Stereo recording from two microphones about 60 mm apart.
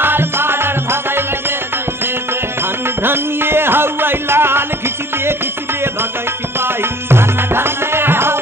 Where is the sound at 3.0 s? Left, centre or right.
Right.